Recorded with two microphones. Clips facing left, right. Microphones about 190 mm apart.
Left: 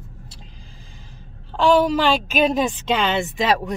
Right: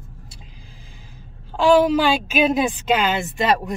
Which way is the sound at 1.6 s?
10° right (ahead or behind).